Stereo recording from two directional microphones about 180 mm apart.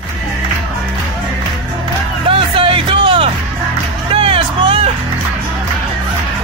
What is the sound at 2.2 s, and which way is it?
Music, 30° right (ahead or behind).